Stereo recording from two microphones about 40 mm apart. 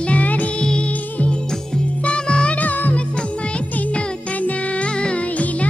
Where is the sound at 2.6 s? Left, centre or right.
Left.